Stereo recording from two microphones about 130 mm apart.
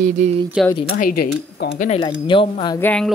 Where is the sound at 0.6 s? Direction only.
5° right (ahead or behind).